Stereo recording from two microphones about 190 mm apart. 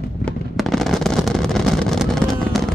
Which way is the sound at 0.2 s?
Centre (ahead or behind).